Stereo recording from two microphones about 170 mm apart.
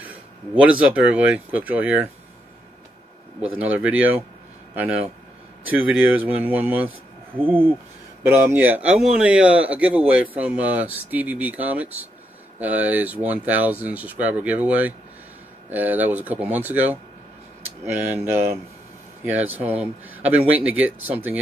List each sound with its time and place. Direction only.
0.6 s speech: 5° right (ahead or behind)
3.5 s speech: 10° right (ahead or behind)